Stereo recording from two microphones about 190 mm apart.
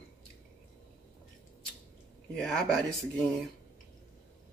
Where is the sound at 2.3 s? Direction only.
5° left (ahead or behind).